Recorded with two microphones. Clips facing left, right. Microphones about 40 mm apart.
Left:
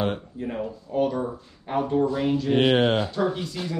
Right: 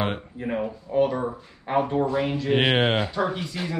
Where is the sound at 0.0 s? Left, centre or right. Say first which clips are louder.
Even; right.